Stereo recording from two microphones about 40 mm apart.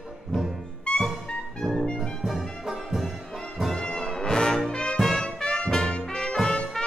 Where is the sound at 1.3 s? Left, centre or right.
Left.